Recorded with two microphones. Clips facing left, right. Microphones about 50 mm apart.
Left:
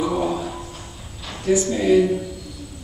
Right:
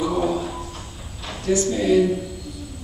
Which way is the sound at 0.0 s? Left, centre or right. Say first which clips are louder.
Even; centre.